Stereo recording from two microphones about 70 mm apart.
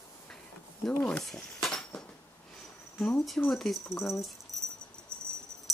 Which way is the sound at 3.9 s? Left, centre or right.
Left.